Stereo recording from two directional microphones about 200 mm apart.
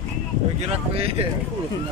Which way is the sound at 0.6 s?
30° right (ahead or behind).